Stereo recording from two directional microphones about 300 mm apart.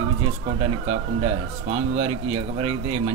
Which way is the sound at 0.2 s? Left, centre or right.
Centre.